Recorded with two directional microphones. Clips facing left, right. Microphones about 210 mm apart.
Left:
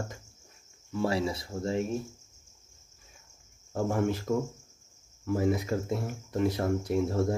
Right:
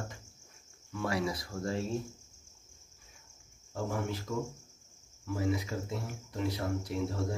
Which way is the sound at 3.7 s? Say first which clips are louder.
Left 7 dB; 50° left (ahead or behind).